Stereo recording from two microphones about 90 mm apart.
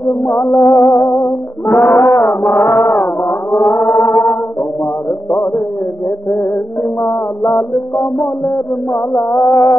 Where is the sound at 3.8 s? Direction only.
35° left (ahead or behind).